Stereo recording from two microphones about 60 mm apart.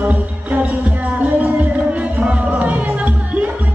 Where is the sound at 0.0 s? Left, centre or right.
Right.